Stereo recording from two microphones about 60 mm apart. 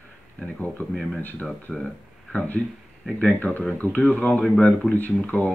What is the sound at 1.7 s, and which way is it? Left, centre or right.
Speech, centre.